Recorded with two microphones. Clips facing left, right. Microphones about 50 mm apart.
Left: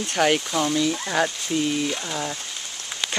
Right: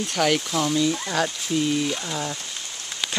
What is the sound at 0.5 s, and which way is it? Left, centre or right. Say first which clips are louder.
Speech: even; centre.